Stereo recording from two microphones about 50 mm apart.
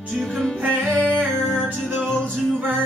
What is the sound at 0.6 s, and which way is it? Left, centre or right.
Music, right.